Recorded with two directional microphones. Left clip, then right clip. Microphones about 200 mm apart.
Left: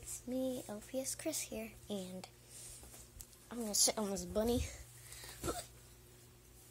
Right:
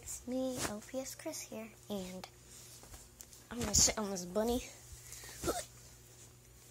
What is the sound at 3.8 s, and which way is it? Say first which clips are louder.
Speech: right 1 dB; 10° left (ahead or behind).